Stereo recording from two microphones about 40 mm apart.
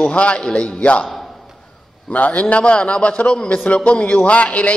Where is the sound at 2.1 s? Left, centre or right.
Left.